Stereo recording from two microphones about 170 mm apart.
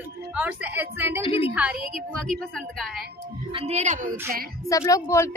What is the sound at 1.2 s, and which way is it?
Speech, 35° left (ahead or behind).